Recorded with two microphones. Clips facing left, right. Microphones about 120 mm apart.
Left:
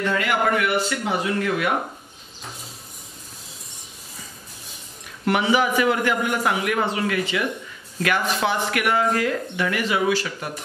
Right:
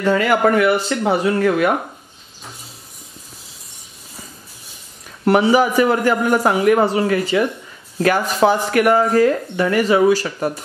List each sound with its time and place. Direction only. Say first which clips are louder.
0.0 s speech: right 7 dB; 40° right (ahead or behind)
5.2 s speech: right 6 dB; 40° right (ahead or behind)